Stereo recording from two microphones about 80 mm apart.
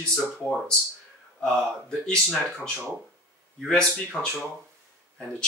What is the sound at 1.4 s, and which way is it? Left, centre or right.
Speech, centre.